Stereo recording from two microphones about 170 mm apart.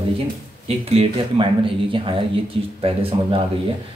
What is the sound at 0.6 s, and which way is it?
Speech, 35° right (ahead or behind).